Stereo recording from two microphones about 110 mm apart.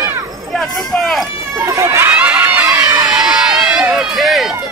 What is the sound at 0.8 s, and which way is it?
Run, 5° left (ahead or behind).